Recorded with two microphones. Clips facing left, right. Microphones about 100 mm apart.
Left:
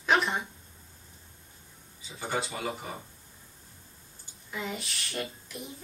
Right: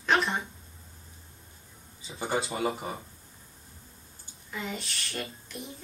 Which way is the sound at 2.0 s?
25° right (ahead or behind).